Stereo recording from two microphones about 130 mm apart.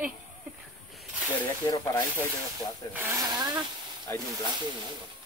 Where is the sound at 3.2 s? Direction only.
30° right (ahead or behind).